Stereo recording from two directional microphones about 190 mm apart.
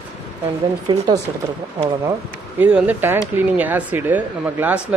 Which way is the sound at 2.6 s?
10° right (ahead or behind).